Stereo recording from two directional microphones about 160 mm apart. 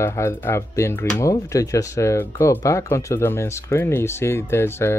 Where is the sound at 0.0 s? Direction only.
15° left (ahead or behind).